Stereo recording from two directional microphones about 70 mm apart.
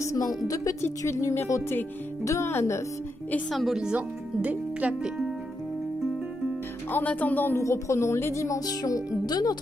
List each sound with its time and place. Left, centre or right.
0.0 s a woman's voice: left
3.7 s speech: centre
6.9 s speech: left
7.5 s a woman's voice: left
8.6 s speech: left
9.2 s speech: left